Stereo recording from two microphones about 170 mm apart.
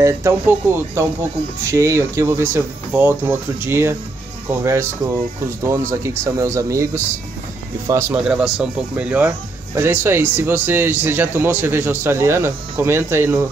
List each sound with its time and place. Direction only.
0.0 s speech: 15° right (ahead or behind)
8.2 s speech: 5° right (ahead or behind)